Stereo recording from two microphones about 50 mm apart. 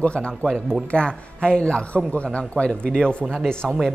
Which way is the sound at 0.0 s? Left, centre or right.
Left.